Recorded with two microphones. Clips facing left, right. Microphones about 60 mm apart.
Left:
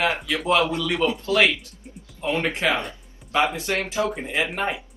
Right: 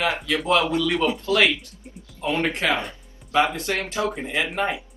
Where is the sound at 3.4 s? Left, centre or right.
Centre.